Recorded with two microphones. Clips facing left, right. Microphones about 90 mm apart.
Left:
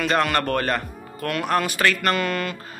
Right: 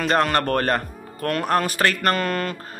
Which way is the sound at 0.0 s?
35° right (ahead or behind).